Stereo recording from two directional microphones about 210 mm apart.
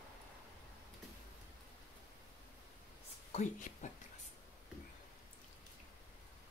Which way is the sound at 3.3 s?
35° left (ahead or behind).